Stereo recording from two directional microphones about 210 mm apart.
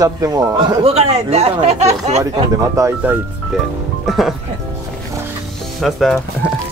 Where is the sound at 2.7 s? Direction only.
10° right (ahead or behind).